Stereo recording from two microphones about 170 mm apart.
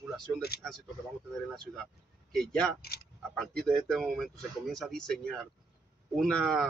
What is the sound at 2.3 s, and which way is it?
A man's voice, 5° left (ahead or behind).